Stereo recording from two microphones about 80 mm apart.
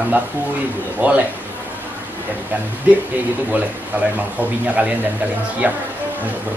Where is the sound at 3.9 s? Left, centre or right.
Right.